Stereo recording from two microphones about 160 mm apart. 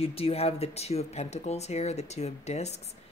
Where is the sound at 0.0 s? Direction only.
35° left (ahead or behind).